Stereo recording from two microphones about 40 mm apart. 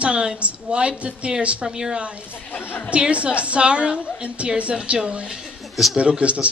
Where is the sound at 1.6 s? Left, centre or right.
Centre.